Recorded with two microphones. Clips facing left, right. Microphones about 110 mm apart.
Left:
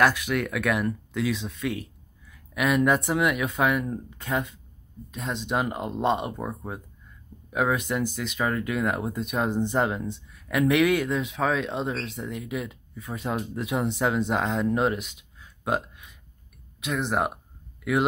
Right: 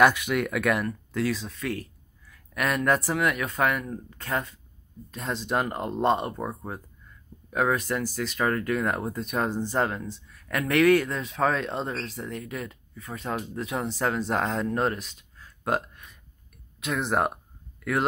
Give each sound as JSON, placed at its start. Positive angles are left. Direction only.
{"t": 0.0, "sound": "speech", "side_deg": 0}
{"t": 15.6, "sound": "a sound", "side_deg": 5}
{"t": 16.8, "sound": "speech", "side_deg": 0}